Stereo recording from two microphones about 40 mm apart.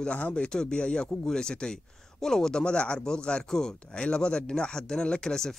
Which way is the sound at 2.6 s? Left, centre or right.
Left.